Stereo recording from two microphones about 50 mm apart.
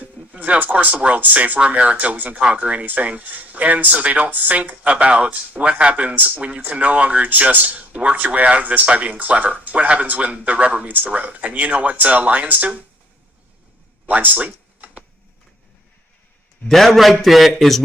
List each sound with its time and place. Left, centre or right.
0.4 s speech: right
14.0 s a sound: right
16.6 s a man's voice: centre